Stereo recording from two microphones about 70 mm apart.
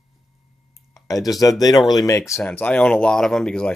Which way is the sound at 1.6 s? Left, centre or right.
Left.